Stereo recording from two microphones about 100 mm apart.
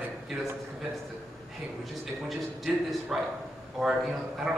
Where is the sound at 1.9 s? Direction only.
Centre (ahead or behind).